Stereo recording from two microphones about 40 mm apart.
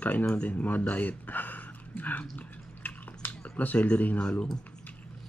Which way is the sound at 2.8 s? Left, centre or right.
Left.